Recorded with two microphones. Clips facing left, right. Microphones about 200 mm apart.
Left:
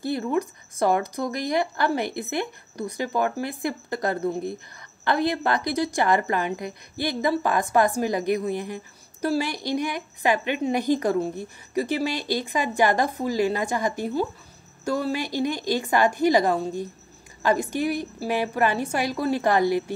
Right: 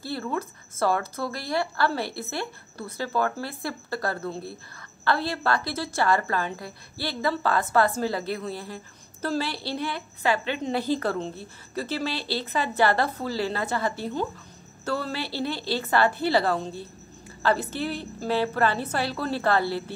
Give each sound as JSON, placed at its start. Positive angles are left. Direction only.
{"t": 0.0, "sound": "a woman's voice", "side_deg": 15}